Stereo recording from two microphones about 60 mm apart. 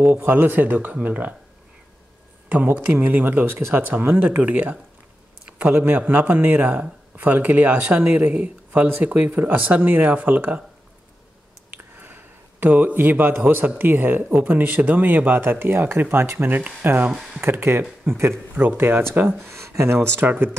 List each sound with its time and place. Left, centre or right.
0.0 s speech: right
2.5 s speech: right
11.7 s a sound: right
13.7 s speech: right
17.1 s speech: centre
17.4 s speech: right
19.5 s speech: right
20.2 s speech: right